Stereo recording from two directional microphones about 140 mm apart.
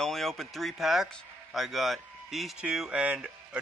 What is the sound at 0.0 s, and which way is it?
Speech, centre (ahead or behind).